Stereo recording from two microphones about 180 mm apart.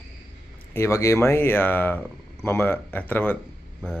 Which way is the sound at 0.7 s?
15° left (ahead or behind).